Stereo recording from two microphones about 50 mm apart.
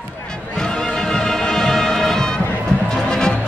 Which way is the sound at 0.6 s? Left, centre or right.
Centre.